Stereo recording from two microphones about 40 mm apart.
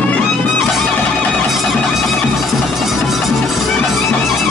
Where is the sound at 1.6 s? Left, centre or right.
Centre.